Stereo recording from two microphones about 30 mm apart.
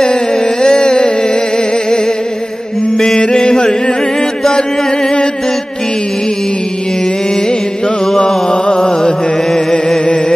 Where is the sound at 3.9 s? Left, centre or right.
Centre.